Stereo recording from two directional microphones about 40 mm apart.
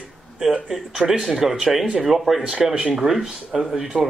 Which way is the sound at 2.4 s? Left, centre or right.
Centre.